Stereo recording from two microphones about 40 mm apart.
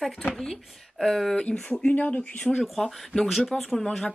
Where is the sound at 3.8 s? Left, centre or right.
Centre.